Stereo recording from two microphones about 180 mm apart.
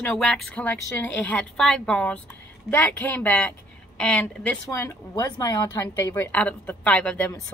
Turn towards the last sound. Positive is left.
turn(degrees=10)  # may be behind; listen again after turning